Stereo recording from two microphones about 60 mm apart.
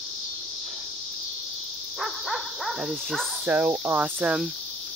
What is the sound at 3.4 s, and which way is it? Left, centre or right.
Cricket, right.